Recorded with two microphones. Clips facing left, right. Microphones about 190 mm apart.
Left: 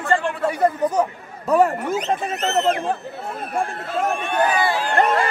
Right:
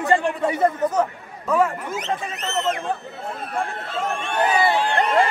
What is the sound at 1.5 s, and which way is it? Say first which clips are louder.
Speech: left 4 dB; 40° left (ahead or behind).